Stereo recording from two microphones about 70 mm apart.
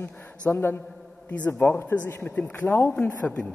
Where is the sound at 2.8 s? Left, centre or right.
Centre.